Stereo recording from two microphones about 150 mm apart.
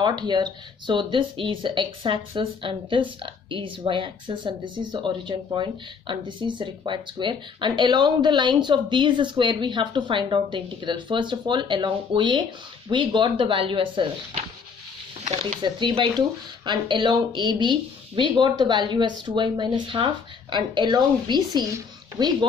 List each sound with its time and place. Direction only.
0.0 s speech: 30° right (ahead or behind)
15.2 s speech: 45° right (ahead or behind)
15.6 s speech: 30° right (ahead or behind)